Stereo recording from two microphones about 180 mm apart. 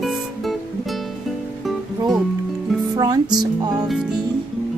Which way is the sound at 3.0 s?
20° right (ahead or behind).